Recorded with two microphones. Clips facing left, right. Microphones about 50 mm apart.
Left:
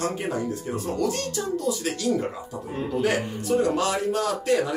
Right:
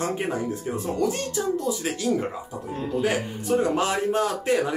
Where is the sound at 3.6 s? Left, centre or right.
Right.